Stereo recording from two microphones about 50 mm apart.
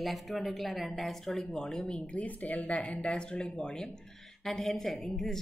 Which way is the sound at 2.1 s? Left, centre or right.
Left.